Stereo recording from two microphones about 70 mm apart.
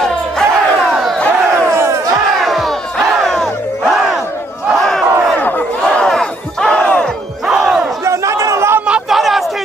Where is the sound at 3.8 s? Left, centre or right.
Centre.